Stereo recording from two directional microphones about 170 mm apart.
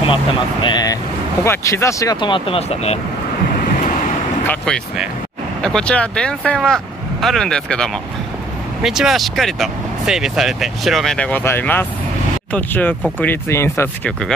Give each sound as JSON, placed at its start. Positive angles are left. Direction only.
{"t": 0.0, "sound": "speech", "side_deg": 30}
{"t": 4.5, "sound": "speech", "side_deg": 5}